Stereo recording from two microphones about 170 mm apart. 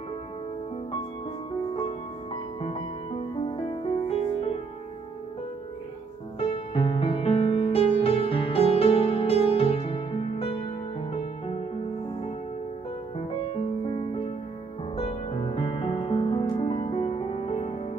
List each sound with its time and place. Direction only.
3.3 s music: 30° left (ahead or behind)
6.4 s music: 35° left (ahead or behind)
13.8 s music: 30° left (ahead or behind)